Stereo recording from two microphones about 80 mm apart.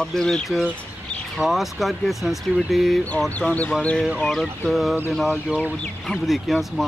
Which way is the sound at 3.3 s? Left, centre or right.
Centre.